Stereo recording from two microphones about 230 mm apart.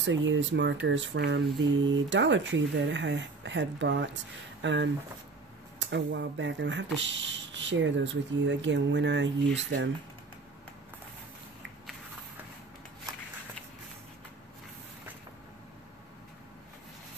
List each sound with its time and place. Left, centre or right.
0.0 s speech: right